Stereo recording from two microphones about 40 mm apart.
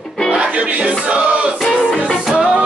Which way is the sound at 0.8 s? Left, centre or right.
Right.